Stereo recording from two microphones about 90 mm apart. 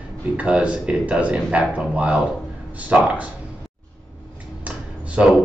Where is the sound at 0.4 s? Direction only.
10° right (ahead or behind).